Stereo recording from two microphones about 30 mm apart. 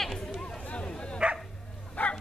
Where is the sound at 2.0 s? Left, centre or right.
Left.